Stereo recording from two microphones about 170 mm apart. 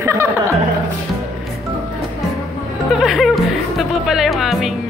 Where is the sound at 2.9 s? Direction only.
Centre (ahead or behind).